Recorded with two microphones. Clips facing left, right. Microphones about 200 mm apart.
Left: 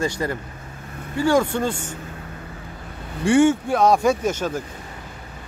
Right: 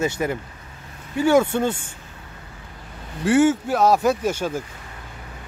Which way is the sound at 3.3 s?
5° right (ahead or behind).